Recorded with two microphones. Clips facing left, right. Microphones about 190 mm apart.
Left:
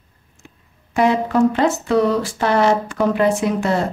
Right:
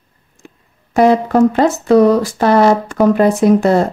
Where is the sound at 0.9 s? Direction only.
40° right (ahead or behind).